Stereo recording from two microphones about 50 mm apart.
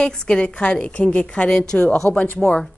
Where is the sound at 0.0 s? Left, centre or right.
Centre.